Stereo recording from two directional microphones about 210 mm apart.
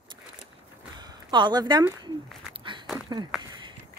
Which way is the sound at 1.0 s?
20° right (ahead or behind).